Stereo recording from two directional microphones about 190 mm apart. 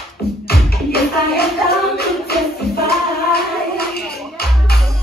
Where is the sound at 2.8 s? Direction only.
55° left (ahead or behind).